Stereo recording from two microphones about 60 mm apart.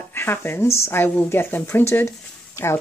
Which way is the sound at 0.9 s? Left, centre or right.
Left.